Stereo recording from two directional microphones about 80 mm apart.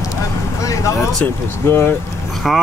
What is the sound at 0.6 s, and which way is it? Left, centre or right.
Vehicle, left.